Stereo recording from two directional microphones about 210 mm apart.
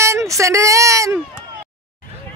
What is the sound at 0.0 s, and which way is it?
Speech, 15° right (ahead or behind).